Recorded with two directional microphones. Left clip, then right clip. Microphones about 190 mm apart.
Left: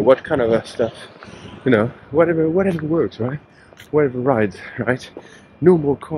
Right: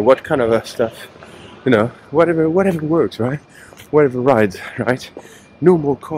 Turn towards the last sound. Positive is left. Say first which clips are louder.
# right 1 dB
turn(degrees=-10)  # may be behind; listen again after turning